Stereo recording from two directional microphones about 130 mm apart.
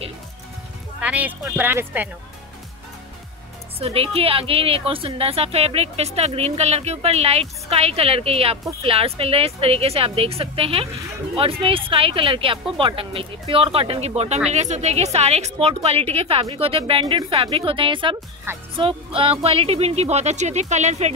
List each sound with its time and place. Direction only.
1.0 s speech: 10° right (ahead or behind)
3.8 s a woman's voice: 50° right (ahead or behind)
18.5 s speech: 20° right (ahead or behind)
18.8 s a woman's voice: 45° right (ahead or behind); by 21.1 s 60° right (ahead or behind)